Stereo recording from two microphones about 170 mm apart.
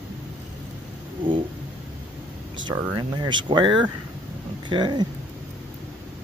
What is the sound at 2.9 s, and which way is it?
Speech, 25° right (ahead or behind).